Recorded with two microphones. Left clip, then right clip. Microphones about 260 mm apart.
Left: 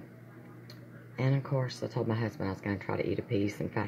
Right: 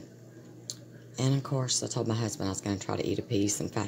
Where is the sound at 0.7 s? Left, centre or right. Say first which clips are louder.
Right 6 dB; right.